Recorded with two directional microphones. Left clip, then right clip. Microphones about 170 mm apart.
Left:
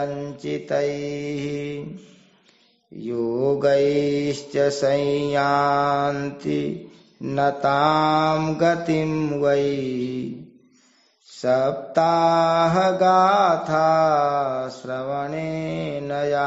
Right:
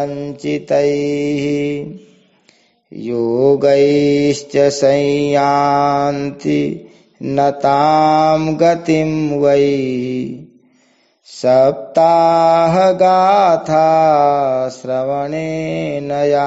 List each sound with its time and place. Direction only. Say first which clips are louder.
0.1 s mantra: right 7 dB; 25° right (ahead or behind)
3.0 s mantra: right 9 dB; 30° right (ahead or behind)
11.4 s mantra: right 9 dB; 30° right (ahead or behind)